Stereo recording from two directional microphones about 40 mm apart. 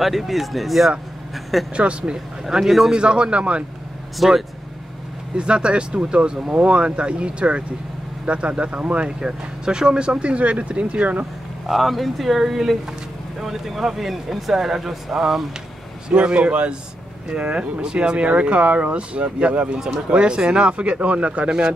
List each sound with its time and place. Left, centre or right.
0.0 s speech: centre
1.8 s speech: right
2.4 s speech: centre
3.0 s speech: right
4.2 s speech: centre
5.3 s speech: right
9.2 s speech: centre; by 11.2 s right
11.6 s speech: centre
16.1 s speech: right
21.5 s speech: centre